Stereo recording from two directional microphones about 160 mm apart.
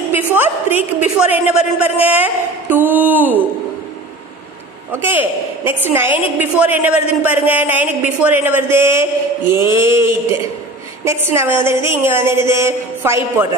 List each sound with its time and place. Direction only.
0.1 s a woman's voice: 10° right (ahead or behind)
4.9 s a woman's voice: 15° right (ahead or behind)
11.3 s a woman's voice: 15° right (ahead or behind)